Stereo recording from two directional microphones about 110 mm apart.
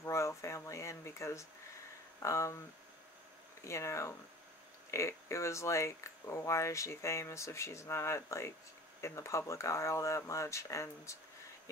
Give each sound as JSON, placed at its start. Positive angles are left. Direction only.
{"t": 0.0, "sound": "a sound", "side_deg": 25}
{"t": 2.2, "sound": "speech", "side_deg": 25}
{"t": 3.6, "sound": "speech", "side_deg": 25}